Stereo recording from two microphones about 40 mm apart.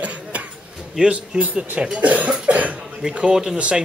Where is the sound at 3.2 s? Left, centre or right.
Centre.